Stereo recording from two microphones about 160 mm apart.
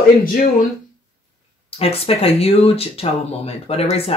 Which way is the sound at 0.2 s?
60° left (ahead or behind).